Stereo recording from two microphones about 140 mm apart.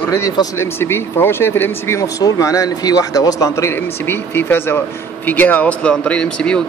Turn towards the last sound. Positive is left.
turn(degrees=5)  # may be behind; listen again after turning